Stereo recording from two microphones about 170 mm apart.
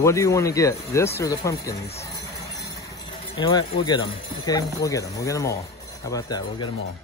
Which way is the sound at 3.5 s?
25° left (ahead or behind).